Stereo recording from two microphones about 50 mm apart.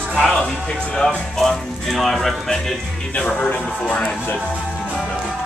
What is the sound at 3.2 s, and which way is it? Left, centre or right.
Speech, left.